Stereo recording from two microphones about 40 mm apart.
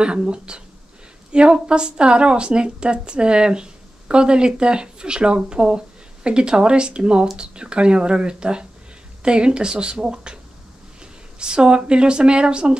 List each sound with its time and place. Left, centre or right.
0.0 s speech: right